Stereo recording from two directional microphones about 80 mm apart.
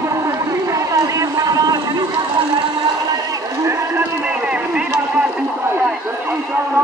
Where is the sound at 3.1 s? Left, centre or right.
Right.